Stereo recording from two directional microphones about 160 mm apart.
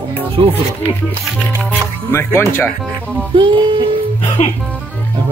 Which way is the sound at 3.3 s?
30° right (ahead or behind).